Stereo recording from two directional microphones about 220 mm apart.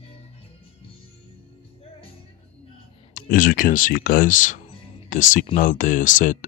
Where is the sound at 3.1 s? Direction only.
40° left (ahead or behind).